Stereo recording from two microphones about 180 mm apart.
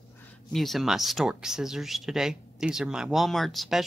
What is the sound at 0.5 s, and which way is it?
Speech, centre (ahead or behind).